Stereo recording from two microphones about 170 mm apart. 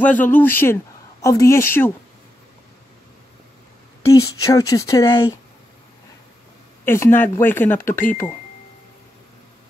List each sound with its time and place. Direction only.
0.0 s speech: 10° left (ahead or behind)
4.1 s speech: 20° left (ahead or behind)
6.8 s speech: 15° left (ahead or behind)